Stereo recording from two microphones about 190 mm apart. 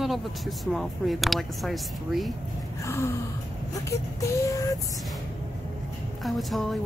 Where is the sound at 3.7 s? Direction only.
15° left (ahead or behind).